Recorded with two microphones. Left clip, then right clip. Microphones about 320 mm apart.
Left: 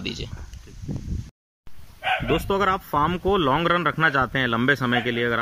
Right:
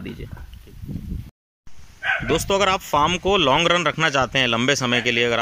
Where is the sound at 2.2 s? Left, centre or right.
Centre.